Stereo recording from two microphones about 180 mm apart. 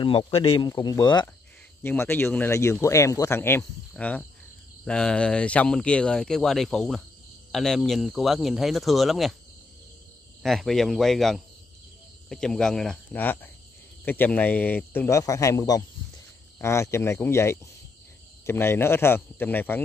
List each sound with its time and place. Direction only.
0.0 s speech: 30° left (ahead or behind)
1.8 s speech: 10° left (ahead or behind)
10.4 s speech: centre (ahead or behind)